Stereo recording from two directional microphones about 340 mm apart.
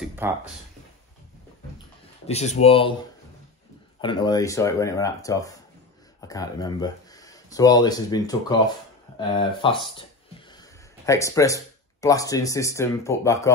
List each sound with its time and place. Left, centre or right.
0.0 s a sound: centre
2.2 s speech: centre
4.0 s speech: centre